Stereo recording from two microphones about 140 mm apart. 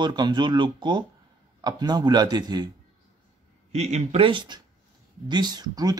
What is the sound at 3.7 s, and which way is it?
Speech, 50° right (ahead or behind).